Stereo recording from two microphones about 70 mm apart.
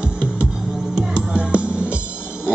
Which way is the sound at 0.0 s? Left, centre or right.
Centre.